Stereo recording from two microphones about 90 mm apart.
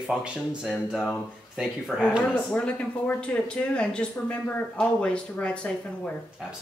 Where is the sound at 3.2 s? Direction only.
10° left (ahead or behind).